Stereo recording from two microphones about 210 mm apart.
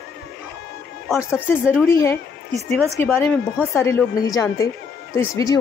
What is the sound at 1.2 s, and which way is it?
Speech, 10° left (ahead or behind).